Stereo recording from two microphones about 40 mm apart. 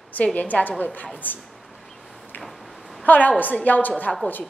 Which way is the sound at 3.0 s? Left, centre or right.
Left.